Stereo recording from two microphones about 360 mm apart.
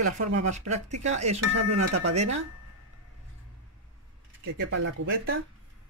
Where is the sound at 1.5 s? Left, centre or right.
Right.